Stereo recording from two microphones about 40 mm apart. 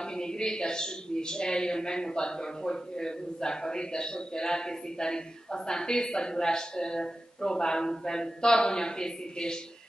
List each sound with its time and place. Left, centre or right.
0.1 s a woman's voice: centre